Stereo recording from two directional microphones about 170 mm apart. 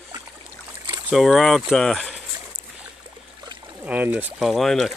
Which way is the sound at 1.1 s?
Centre (ahead or behind).